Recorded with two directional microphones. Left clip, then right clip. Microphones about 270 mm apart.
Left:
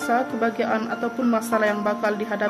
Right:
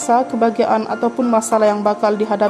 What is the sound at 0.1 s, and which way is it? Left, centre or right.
A woman's voice, centre.